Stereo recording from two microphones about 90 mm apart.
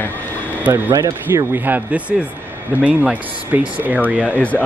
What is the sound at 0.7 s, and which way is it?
Speech, 40° right (ahead or behind).